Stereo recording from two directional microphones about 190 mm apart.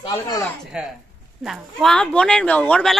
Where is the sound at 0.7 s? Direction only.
5° right (ahead or behind).